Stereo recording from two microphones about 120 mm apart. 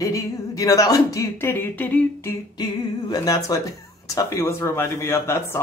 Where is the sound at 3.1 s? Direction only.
30° left (ahead or behind).